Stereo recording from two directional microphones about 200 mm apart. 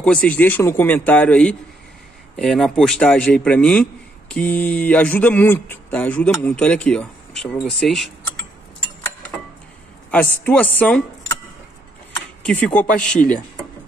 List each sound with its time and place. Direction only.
0.0 s a man's voice: 5° left (ahead or behind)
10.1 s speech: 10° left (ahead or behind)
12.4 s speech: 5° left (ahead or behind)